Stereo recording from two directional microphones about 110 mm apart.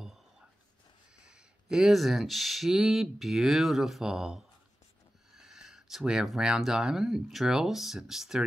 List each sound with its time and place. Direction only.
1.1 s speech: 5° right (ahead or behind)